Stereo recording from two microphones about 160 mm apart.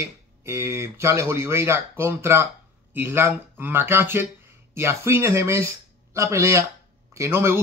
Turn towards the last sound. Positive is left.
turn(degrees=-15)  # may be behind; listen again after turning